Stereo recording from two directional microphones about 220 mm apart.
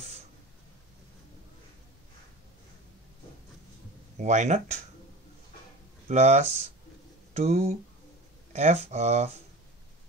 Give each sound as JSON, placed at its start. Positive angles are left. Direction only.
{"t": 4.2, "sound": "speech", "side_deg": -30}
{"t": 6.0, "sound": "speech", "side_deg": -30}